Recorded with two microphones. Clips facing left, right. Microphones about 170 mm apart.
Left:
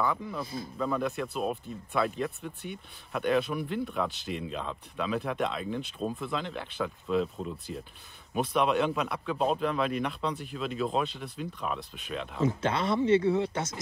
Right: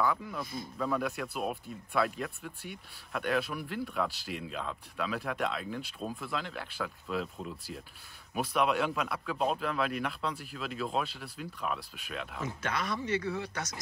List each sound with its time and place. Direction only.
0.0 s speech: centre (ahead or behind)
12.4 s speech: 25° left (ahead or behind)